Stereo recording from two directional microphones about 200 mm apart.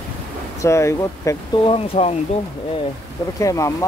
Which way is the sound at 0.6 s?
15° left (ahead or behind).